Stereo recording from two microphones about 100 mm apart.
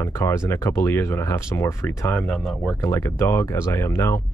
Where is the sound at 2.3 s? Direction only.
Centre (ahead or behind).